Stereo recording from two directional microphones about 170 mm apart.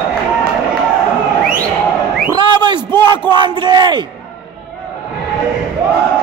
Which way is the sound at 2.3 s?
25° right (ahead or behind).